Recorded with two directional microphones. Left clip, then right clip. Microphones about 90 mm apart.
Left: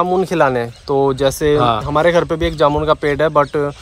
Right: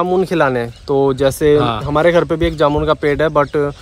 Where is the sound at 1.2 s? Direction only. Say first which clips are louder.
Right 2 dB; 50° right (ahead or behind).